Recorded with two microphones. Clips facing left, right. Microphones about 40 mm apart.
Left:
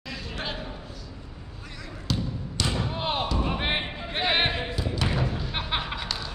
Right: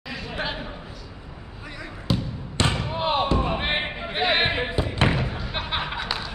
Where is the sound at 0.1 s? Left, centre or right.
Centre.